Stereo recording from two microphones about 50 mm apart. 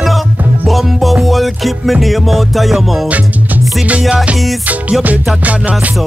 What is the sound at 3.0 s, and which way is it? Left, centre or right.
Music, right.